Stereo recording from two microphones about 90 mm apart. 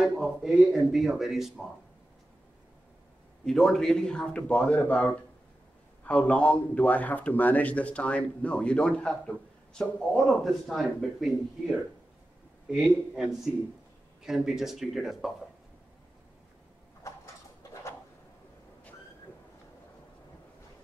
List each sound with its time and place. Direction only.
0.0 s speech: centre (ahead or behind)
3.4 s a man's voice: 5° left (ahead or behind)
12.7 s speech: centre (ahead or behind)